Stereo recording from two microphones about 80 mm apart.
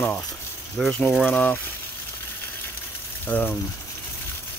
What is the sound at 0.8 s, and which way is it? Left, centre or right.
Speech, centre.